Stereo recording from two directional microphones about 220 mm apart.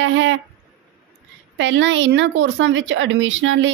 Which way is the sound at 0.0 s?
60° right (ahead or behind).